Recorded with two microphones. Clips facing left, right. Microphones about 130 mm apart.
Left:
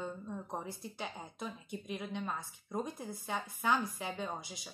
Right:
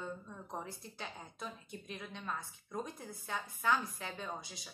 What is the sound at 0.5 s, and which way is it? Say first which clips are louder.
Speech: left 3 dB; 15° left (ahead or behind).